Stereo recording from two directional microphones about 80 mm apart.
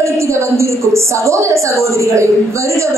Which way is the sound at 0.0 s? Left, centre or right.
Right.